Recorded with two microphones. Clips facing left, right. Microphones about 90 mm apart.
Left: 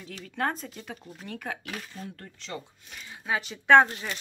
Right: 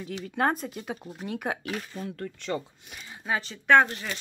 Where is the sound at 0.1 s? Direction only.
20° right (ahead or behind).